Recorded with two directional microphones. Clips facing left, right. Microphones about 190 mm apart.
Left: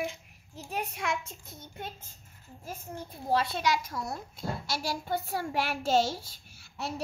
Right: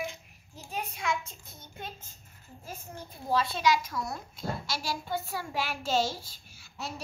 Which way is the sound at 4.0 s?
25° left (ahead or behind).